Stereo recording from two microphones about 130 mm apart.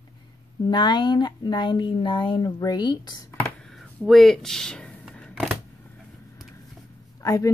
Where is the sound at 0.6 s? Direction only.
35° left (ahead or behind).